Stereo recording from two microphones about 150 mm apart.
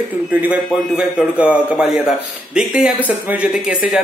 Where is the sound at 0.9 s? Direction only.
5° right (ahead or behind).